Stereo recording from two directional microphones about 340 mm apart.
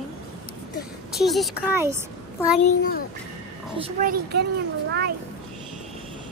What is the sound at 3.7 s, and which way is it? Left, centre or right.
A child's voice, centre.